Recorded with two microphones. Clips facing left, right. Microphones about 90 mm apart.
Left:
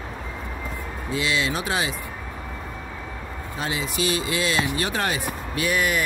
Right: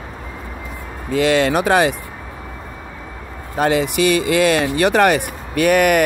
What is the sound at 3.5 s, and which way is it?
Speech, 60° right (ahead or behind).